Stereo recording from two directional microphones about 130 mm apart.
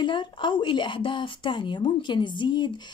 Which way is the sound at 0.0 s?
40° left (ahead or behind).